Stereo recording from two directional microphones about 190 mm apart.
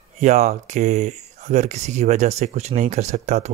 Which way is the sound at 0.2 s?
35° right (ahead or behind).